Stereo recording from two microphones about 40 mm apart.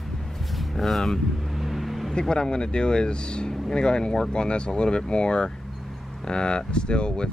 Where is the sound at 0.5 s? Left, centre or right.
Centre.